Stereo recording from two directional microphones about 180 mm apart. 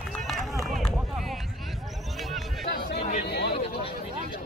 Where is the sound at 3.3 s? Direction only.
65° left (ahead or behind).